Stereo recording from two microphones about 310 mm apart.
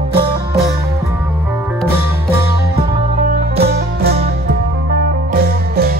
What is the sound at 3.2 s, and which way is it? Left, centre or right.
Music, right.